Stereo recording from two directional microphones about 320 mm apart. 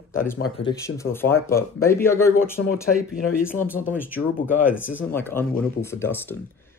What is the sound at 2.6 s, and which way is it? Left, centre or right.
Speech, left.